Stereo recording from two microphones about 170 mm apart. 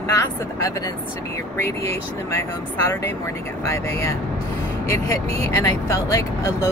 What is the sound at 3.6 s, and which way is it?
Speech, 15° left (ahead or behind).